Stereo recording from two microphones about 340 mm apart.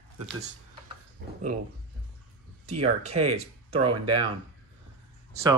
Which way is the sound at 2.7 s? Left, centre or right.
Centre.